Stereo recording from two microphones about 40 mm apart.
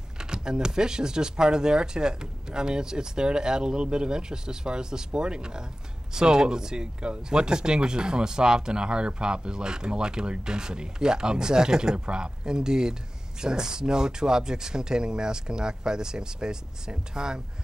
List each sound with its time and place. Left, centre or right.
0.2 s speech: centre